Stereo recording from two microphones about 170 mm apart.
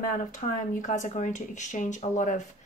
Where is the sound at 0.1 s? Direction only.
50° left (ahead or behind).